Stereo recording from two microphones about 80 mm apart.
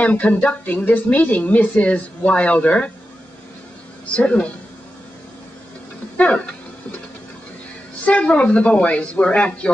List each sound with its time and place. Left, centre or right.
0.0 s a woman's voice: centre
4.1 s a woman's voice: centre
6.1 s speech: centre
8.0 s a woman's voice: centre